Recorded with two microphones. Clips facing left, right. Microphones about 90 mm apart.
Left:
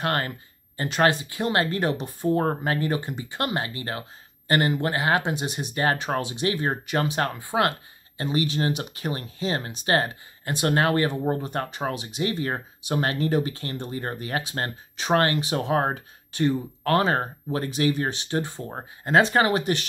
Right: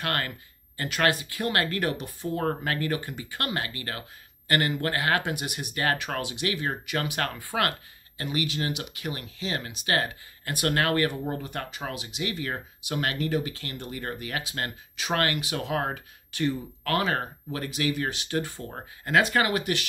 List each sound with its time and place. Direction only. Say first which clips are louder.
0.0 s speech: left 4 dB; 30° left (ahead or behind)